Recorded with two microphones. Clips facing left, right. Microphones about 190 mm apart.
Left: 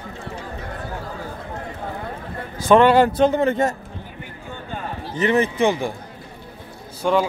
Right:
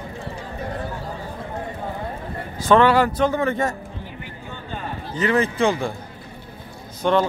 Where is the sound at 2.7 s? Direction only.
20° left (ahead or behind).